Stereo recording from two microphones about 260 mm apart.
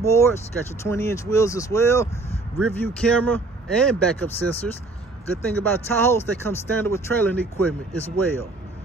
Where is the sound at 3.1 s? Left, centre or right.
Centre.